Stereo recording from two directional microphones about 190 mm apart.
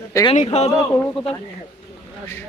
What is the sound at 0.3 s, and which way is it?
Speech, 35° left (ahead or behind).